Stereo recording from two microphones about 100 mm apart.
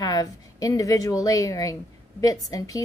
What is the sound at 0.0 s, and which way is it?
A woman's voice, 40° left (ahead or behind).